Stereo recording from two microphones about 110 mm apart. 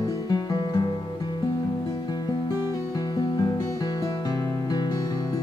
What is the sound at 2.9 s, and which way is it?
Music, 35° left (ahead or behind).